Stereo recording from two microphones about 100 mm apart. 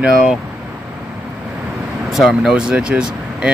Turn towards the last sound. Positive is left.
turn(degrees=-10)  # may be behind; listen again after turning